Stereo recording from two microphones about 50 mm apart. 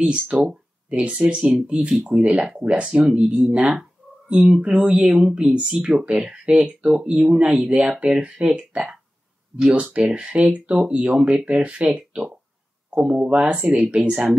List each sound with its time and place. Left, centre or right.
0.0 s speech: right
9.9 s speech: right